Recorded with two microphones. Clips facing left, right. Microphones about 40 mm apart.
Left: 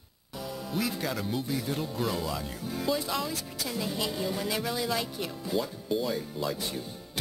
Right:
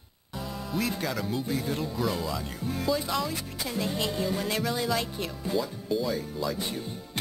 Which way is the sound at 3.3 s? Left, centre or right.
Centre.